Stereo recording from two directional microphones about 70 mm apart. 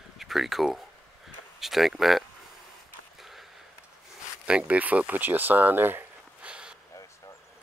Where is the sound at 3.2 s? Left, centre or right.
Centre.